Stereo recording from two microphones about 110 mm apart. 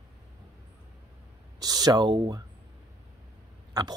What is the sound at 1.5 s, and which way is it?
Speech, 35° right (ahead or behind).